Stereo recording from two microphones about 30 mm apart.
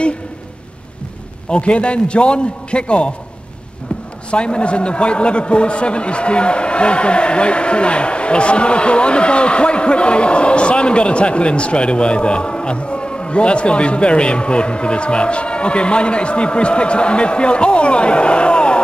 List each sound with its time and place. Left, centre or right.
1.5 s a man's voice: left
4.3 s a man's voice: left